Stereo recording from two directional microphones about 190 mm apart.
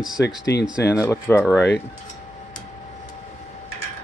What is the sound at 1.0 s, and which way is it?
Speech, 15° left (ahead or behind).